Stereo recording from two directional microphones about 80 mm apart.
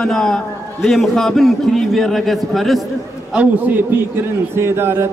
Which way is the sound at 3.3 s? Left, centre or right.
Centre.